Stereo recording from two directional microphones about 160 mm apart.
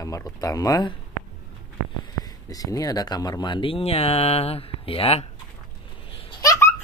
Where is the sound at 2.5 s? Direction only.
25° left (ahead or behind).